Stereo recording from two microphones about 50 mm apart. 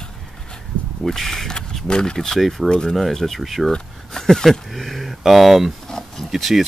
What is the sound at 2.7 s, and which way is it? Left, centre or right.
Speech, centre.